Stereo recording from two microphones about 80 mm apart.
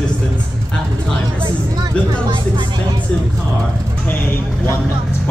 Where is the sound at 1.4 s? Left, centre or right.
Right.